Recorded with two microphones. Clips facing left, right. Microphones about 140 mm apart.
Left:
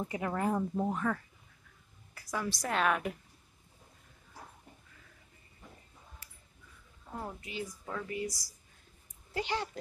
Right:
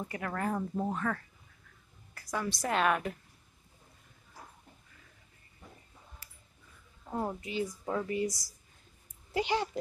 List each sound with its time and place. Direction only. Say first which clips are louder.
0.0 s a woman's voice: left 2 dB; 15° left (ahead or behind); by 3.0 s centre (ahead or behind)
7.2 s a woman's voice: right 6 dB; 30° right (ahead or behind)
9.3 s speech: right 4 dB; 15° right (ahead or behind)